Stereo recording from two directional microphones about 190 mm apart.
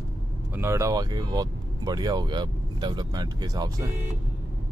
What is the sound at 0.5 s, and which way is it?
Speech, 15° right (ahead or behind).